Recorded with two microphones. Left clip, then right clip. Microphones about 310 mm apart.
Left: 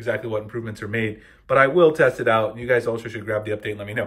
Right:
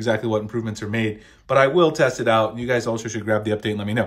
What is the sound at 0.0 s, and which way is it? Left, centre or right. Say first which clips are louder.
Speech: right 3 dB; centre.